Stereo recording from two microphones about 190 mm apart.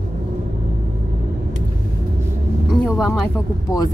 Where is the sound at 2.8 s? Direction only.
Centre (ahead or behind).